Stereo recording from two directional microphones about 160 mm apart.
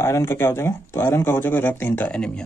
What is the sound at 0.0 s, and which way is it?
A man's voice, 15° left (ahead or behind).